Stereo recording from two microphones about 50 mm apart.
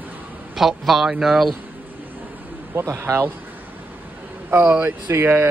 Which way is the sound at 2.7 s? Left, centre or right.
Right.